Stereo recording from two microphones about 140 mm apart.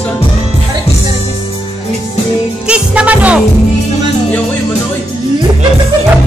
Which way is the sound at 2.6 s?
10° right (ahead or behind).